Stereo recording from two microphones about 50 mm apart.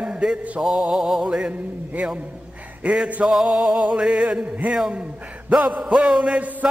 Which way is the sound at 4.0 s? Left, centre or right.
Centre.